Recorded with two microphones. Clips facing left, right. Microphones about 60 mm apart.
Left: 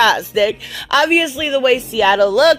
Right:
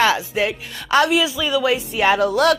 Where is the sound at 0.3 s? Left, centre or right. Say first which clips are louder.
Left 6 dB; left.